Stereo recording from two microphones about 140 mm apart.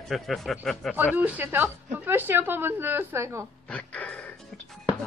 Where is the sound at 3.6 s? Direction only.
10° left (ahead or behind).